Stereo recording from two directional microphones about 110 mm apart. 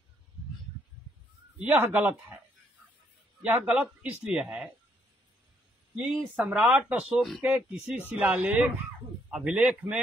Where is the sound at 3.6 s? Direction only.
10° right (ahead or behind).